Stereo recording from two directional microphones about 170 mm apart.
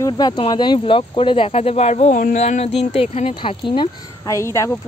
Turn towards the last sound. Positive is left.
turn(degrees=15)  # may be behind; listen again after turning